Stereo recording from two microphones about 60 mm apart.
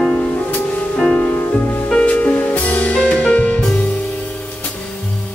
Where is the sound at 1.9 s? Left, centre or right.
Centre.